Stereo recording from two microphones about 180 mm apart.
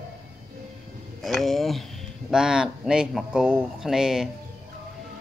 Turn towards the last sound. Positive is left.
turn(degrees=-5)  # may be behind; listen again after turning